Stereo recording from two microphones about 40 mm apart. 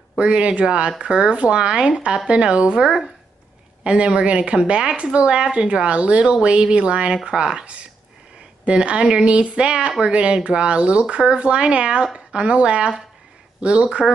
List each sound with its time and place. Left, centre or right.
0.2 s speech: right
8.6 s speech: right
13.8 s speech: centre